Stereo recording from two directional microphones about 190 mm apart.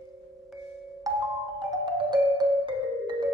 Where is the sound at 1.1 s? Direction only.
20° right (ahead or behind).